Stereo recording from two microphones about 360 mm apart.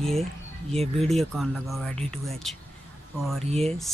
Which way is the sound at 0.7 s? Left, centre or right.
Centre.